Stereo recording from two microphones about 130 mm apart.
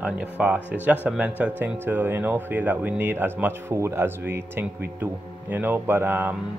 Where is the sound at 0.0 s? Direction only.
10° right (ahead or behind).